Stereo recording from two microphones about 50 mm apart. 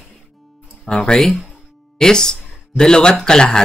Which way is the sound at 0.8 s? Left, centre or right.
Centre.